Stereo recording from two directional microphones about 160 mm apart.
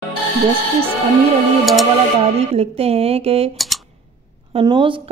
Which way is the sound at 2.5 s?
40° right (ahead or behind).